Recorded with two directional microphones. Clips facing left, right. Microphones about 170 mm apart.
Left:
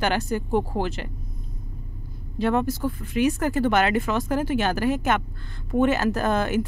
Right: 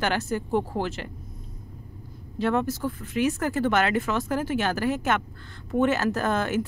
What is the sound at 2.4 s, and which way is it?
Speech, 15° left (ahead or behind).